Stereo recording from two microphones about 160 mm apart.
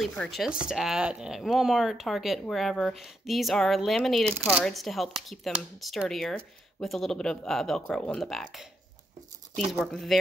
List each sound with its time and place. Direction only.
0.0 s speech: centre (ahead or behind)
9.7 s speech: centre (ahead or behind)